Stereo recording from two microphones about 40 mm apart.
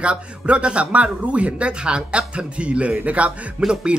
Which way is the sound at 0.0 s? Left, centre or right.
Right.